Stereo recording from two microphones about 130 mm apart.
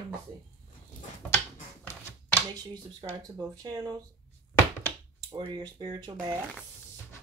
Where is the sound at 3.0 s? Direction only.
35° right (ahead or behind).